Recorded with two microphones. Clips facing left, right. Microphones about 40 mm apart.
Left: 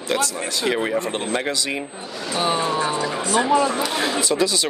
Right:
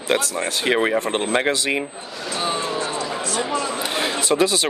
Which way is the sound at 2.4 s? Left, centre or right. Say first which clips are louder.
Left 3 dB; centre.